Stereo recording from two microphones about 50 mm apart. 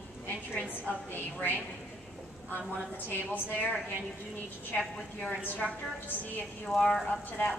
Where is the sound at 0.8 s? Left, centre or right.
Left.